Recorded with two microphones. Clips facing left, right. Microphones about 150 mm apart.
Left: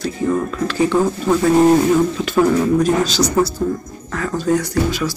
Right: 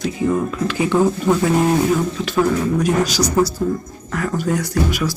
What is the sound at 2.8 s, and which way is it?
Speech, 25° left (ahead or behind).